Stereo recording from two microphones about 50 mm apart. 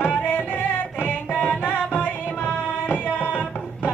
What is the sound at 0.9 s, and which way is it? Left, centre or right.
Music, left.